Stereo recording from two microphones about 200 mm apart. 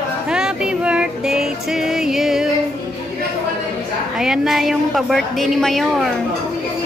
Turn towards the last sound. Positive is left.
turn(degrees=0)  # may be behind; listen again after turning